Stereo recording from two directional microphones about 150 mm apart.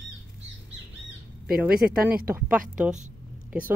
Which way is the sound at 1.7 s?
80° right.